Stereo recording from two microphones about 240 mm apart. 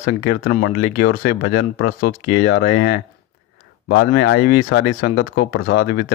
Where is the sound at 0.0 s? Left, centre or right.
Left.